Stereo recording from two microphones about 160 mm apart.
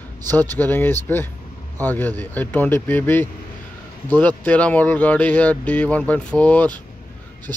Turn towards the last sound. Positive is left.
turn(degrees=10)  # may be behind; listen again after turning